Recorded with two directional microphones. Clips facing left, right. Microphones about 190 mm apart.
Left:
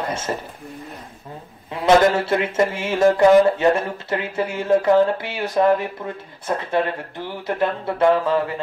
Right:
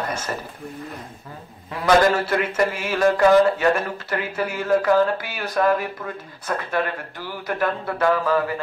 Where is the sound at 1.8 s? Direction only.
25° left (ahead or behind).